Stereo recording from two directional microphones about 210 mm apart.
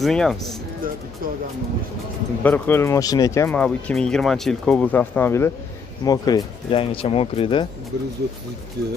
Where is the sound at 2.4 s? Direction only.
10° left (ahead or behind); by 7.6 s 25° left (ahead or behind).